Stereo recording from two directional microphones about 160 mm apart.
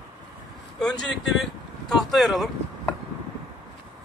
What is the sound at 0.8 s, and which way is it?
Speech, 5° left (ahead or behind).